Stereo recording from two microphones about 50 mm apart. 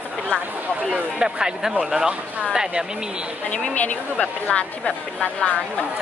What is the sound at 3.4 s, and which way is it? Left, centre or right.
Speech, left.